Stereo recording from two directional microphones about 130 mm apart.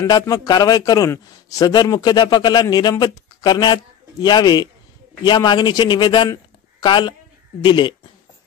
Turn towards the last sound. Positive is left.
turn(degrees=35)  # may be behind; listen again after turning